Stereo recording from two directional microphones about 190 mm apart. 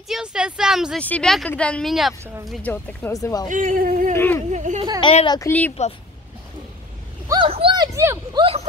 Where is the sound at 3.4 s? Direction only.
40° right (ahead or behind).